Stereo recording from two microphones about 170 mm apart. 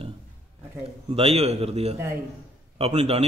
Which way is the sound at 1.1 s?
35° right (ahead or behind).